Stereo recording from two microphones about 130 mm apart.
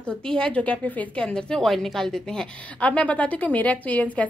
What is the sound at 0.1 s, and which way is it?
A woman's voice, 5° left (ahead or behind).